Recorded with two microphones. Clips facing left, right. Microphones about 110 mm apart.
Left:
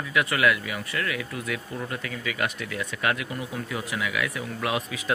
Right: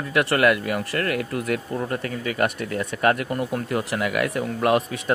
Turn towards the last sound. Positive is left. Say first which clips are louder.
# right 8 dB
turn(degrees=-55)  # may be behind; listen again after turning